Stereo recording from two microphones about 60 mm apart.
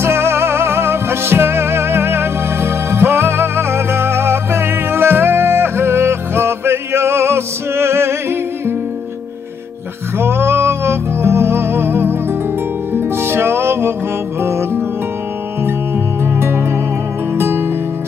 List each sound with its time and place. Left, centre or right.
0.0 s music: right
10.1 s music: right
16.3 s music: right